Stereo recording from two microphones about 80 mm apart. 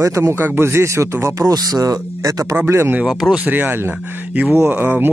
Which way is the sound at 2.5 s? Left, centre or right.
Right.